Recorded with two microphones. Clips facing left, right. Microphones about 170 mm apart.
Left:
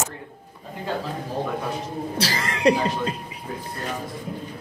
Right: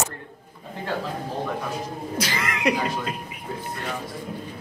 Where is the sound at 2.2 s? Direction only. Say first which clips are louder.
Left 2 dB; 35° left (ahead or behind).